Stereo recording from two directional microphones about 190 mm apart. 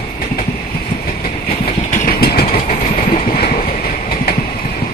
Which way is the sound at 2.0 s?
55° left (ahead or behind).